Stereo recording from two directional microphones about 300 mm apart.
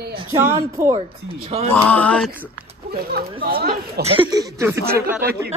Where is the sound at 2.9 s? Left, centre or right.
Right.